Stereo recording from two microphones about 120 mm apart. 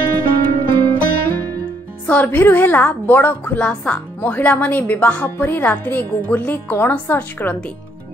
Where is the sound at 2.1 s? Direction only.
15° left (ahead or behind).